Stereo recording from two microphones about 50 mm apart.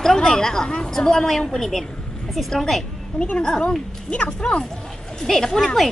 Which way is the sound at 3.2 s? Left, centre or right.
Centre.